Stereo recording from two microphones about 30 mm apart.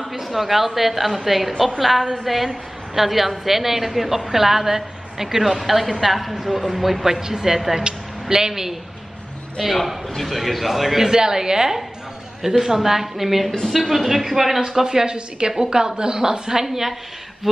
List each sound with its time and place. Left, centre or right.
0.0 s a woman's voice: centre
7.1 s a woman's voice: centre
9.6 s a man's voice: centre
11.1 s a woman's voice: centre
14.8 s a woman's voice: right
16.6 s a woman's voice: centre